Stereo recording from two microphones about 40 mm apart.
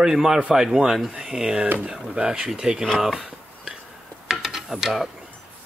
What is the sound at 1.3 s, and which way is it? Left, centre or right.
Speech, right.